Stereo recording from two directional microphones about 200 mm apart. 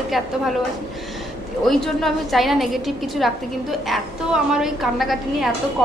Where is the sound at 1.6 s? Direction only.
Centre (ahead or behind).